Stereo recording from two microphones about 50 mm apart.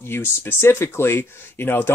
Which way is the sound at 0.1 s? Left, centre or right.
Left.